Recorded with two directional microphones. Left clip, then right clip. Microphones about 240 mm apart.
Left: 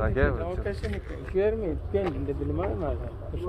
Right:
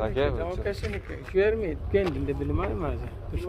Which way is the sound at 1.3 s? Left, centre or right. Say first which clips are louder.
Right 2 dB; right.